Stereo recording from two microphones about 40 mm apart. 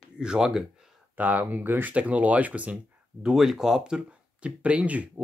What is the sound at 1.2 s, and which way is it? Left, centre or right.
Speech, right.